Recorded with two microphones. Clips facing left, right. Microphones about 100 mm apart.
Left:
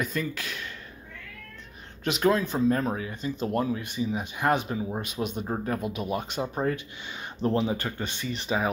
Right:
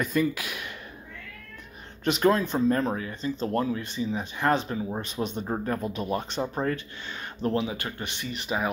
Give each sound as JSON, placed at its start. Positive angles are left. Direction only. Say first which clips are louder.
{"t": 0.0, "sound": "speech", "louder": "right 5 dB", "side_deg": -5}
{"t": 2.0, "sound": "speech", "louder": "right 1 dB", "side_deg": 0}
{"t": 7.5, "sound": "speech", "louder": "left 2 dB", "side_deg": 35}